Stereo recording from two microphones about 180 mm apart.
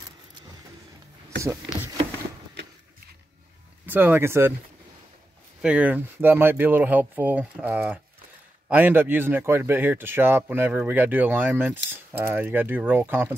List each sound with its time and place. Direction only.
1.4 s speech: 15° right (ahead or behind)
3.8 s speech: 10° right (ahead or behind)
5.6 s speech: 5° right (ahead or behind)